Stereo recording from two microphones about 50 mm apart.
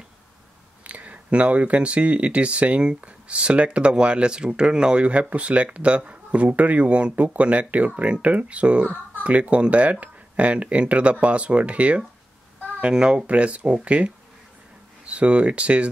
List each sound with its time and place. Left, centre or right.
0.8 s speech: right